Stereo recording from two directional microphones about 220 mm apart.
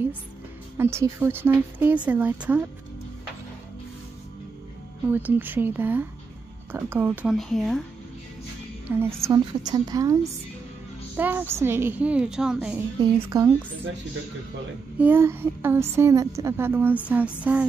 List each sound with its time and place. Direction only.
0.7 s a woman's voice: 10° right (ahead or behind)
5.1 s a woman's voice: 10° right (ahead or behind)
8.8 s a woman's voice: 10° right (ahead or behind)
11.1 s a woman's voice: 10° right (ahead or behind)
13.0 s a woman's voice: 15° right (ahead or behind)
15.0 s a woman's voice: 10° right (ahead or behind)